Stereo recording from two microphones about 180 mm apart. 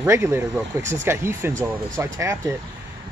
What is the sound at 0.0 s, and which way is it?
Speech, 15° right (ahead or behind).